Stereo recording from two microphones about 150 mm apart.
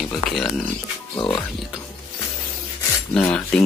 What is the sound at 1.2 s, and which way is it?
Speech, 30° left (ahead or behind).